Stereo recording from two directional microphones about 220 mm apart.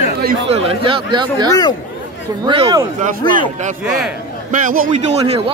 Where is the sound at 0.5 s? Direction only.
25° right (ahead or behind).